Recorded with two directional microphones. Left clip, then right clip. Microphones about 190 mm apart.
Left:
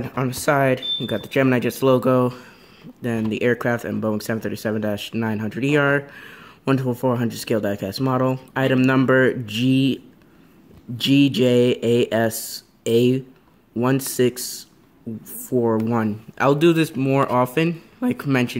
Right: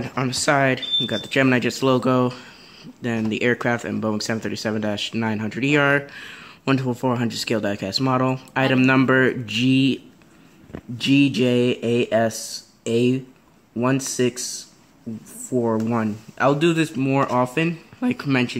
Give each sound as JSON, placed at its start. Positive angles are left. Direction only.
{"t": 0.0, "sound": "speech", "side_deg": 5}
{"t": 11.0, "sound": "speech", "side_deg": 5}
{"t": 15.5, "sound": "speech", "side_deg": 0}